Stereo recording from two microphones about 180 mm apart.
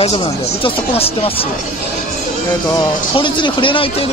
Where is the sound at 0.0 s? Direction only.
30° left (ahead or behind).